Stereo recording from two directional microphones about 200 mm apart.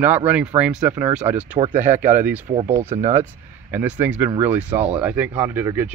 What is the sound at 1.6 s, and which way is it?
Speech, 40° right (ahead or behind).